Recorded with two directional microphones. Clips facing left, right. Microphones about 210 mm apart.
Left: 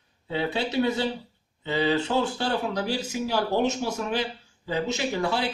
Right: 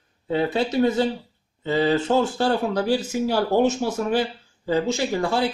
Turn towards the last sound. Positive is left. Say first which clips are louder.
# right 4 dB
turn(degrees=-45)  # may be behind; listen again after turning